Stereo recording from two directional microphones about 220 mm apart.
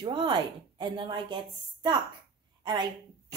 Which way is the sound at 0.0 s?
20° right (ahead or behind).